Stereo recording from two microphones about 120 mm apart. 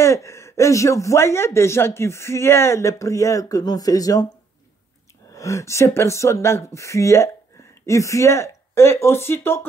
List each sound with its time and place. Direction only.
0.0 s speech: 25° left (ahead or behind)
5.3 s speech: 25° left (ahead or behind)